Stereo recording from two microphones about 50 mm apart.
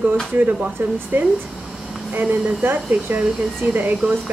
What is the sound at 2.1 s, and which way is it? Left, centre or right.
Speech, right.